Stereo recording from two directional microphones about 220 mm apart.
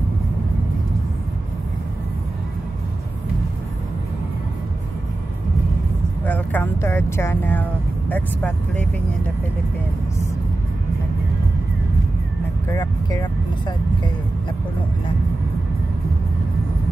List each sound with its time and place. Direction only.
6.2 s a sound: 10° left (ahead or behind)
8.1 s speech: 5° left (ahead or behind)
12.6 s speech: 15° left (ahead or behind)